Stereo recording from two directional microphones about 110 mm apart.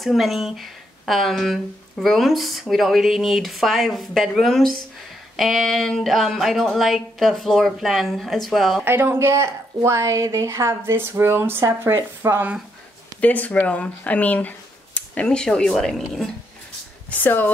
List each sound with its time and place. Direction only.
0.0 s speech: centre (ahead or behind)
8.8 s a woman's voice: 20° right (ahead or behind)
13.2 s speech: 15° left (ahead or behind)
17.2 s speech: 15° left (ahead or behind)